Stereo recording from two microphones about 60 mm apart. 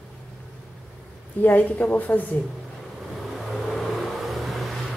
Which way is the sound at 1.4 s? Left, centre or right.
Left.